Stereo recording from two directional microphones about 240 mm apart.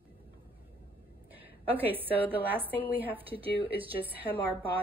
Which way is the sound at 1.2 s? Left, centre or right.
Centre.